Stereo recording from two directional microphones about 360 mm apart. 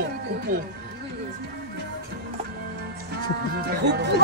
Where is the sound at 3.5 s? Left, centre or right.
Right.